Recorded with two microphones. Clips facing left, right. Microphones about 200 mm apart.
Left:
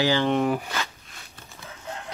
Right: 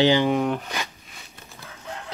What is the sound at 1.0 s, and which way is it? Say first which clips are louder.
Zipper: right 1 dB; 5° right (ahead or behind).